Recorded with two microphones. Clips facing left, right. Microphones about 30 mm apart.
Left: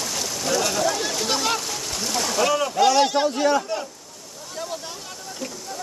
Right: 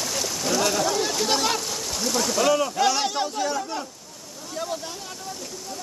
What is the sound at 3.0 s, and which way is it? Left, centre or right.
Speech, centre.